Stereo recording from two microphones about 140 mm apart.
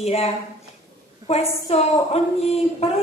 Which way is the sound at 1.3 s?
50° left (ahead or behind).